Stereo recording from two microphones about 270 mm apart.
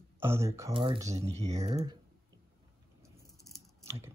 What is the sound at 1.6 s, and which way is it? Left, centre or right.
Speech, right.